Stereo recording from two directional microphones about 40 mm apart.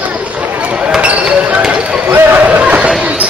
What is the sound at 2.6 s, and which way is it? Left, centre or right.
Bow-wow, right.